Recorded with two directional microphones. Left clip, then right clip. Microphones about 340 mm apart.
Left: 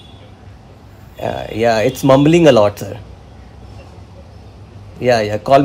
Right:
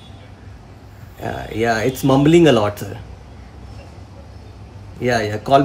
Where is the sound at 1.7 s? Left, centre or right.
Centre.